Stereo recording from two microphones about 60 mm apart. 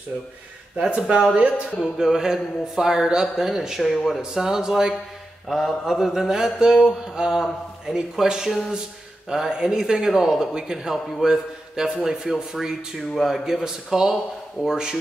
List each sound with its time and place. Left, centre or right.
0.7 s speech: centre